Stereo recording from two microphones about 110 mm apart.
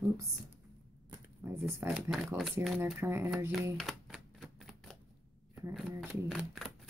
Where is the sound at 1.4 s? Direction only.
25° right (ahead or behind).